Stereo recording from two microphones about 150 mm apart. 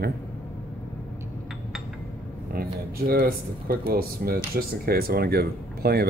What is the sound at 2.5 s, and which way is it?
Speech, 90° right.